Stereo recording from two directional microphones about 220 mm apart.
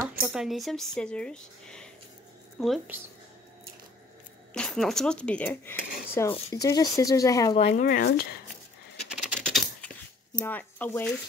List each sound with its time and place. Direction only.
0.2 s speech: centre (ahead or behind)
4.6 s speech: centre (ahead or behind)
7.7 s speech: 40° left (ahead or behind)
9.1 s typing: centre (ahead or behind)
10.4 s speech: 10° left (ahead or behind)